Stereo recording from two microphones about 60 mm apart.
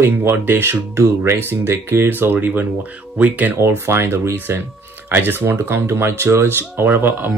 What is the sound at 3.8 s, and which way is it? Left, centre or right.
Speech, right.